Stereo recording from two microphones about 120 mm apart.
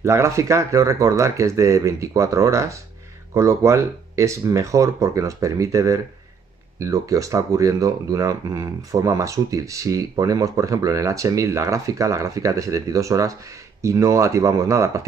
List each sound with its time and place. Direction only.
0.0 s speech: 25° right (ahead or behind)